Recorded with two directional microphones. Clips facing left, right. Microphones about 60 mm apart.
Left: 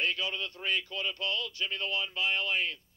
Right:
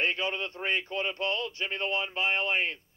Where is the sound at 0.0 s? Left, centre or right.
Right.